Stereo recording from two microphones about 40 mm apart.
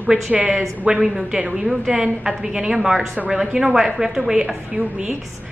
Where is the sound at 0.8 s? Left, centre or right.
Right.